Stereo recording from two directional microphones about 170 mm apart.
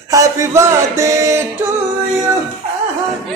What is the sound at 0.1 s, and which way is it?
A man's voice, 20° right (ahead or behind).